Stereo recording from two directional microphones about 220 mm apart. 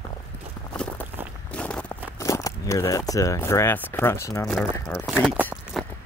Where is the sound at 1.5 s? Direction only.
5° left (ahead or behind).